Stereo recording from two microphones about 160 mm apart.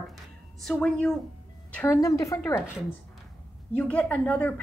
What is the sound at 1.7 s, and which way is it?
Speech, 15° left (ahead or behind).